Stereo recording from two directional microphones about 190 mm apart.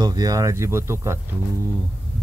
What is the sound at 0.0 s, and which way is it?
Speech, 20° right (ahead or behind).